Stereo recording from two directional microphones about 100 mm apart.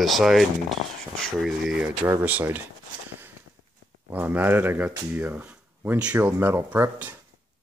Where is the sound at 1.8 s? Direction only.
20° right (ahead or behind).